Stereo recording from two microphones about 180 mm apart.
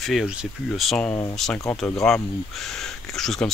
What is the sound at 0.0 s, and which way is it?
Speech, centre (ahead or behind).